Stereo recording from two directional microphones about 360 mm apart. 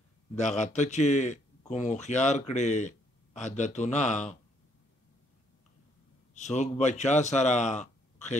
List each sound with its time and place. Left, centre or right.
0.4 s speech: centre
6.3 s a man's voice: centre